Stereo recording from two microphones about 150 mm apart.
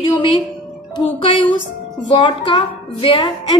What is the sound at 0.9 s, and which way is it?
A woman's voice, 30° left (ahead or behind).